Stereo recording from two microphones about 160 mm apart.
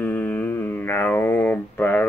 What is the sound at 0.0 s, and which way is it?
Mantra, 10° left (ahead or behind).